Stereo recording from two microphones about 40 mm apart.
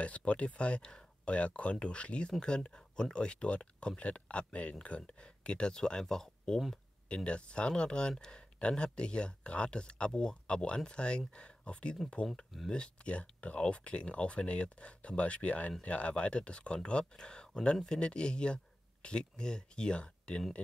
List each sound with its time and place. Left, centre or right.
0.0 s speech: left; by 6.6 s centre
7.2 s speech: left